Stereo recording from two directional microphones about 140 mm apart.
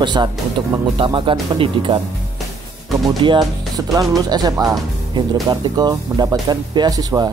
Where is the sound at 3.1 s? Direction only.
30° right (ahead or behind).